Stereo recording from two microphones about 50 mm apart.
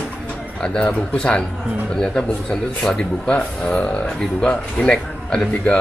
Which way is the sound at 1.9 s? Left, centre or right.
Centre.